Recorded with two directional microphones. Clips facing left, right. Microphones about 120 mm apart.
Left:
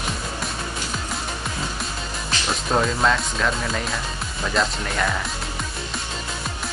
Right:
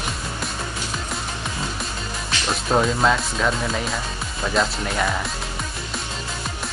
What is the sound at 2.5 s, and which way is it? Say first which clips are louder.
Speech: right 2 dB; 5° right (ahead or behind).